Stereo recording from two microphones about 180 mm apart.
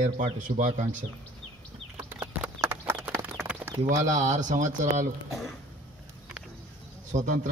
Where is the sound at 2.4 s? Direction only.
10° right (ahead or behind).